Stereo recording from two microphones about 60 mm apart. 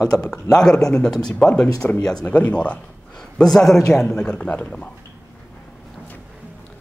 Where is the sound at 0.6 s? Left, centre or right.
Centre.